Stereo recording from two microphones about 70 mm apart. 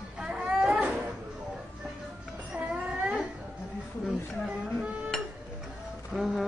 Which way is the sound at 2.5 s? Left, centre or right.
Centre.